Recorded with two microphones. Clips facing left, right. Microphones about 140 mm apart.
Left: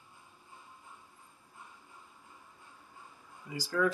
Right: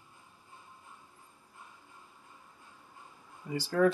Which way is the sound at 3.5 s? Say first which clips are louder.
Right 6 dB; 45° right (ahead or behind).